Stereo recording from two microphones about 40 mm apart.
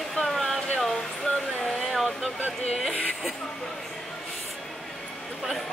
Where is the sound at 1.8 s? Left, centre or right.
Centre.